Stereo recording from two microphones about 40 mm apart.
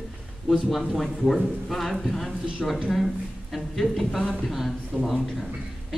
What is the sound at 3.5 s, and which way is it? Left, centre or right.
A man's voice, centre.